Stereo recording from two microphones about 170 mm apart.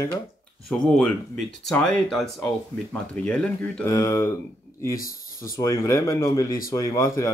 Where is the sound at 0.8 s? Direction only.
5° left (ahead or behind).